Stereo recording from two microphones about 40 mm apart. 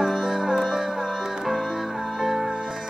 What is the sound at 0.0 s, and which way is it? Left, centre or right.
Music, centre.